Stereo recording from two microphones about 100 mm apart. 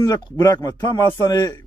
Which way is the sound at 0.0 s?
40° left (ahead or behind).